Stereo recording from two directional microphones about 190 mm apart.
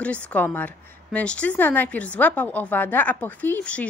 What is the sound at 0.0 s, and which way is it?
A woman's voice, 5° left (ahead or behind).